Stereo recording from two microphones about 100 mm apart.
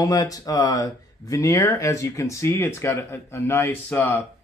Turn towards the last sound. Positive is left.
turn(degrees=20)  # may be behind; listen again after turning